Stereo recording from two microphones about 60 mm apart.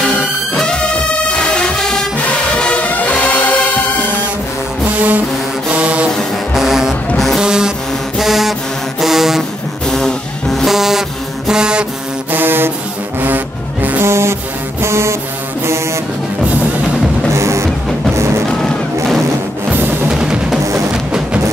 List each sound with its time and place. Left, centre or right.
0.6 s music: centre
4.9 s music: right
5.7 s a sound: right
6.5 s music: centre
9.0 s a sound: centre
9.8 s music: centre
12.3 s foghorn: right
13.9 s music: right
17.3 s music: right
19.7 s music: right
20.1 s music: centre